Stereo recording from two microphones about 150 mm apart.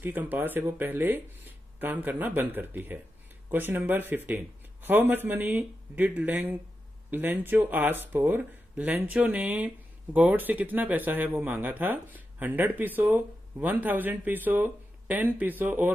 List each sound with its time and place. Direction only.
0.0 s speech: 10° right (ahead or behind)